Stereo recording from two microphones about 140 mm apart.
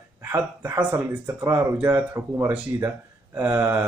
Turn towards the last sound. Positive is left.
turn(degrees=-15)  # may be behind; listen again after turning